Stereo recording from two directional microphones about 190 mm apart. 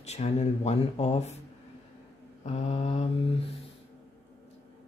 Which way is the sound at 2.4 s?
35° left (ahead or behind).